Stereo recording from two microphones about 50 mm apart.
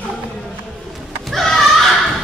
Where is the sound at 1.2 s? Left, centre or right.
Centre.